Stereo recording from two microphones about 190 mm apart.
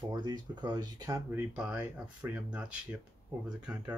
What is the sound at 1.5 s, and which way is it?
Speech, 5° right (ahead or behind).